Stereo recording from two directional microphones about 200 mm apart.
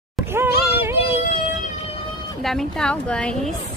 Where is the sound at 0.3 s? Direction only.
10° right (ahead or behind).